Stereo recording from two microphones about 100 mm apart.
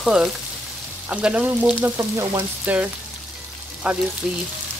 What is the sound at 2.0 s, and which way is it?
Frying, 25° right (ahead or behind).